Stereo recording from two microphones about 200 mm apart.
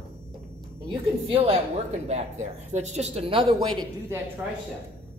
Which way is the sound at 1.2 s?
30° right (ahead or behind).